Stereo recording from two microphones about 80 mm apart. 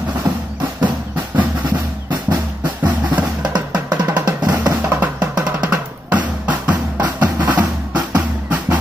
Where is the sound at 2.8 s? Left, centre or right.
Right.